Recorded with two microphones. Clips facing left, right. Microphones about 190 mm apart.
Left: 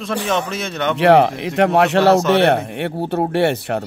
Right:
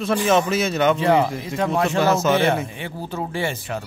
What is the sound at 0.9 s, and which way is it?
A man's voice, 70° left (ahead or behind).